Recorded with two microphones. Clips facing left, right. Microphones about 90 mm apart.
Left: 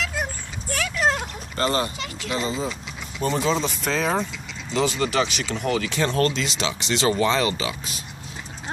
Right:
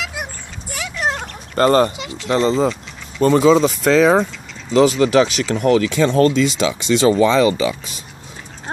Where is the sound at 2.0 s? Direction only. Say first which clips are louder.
Right 4 dB; 20° right (ahead or behind).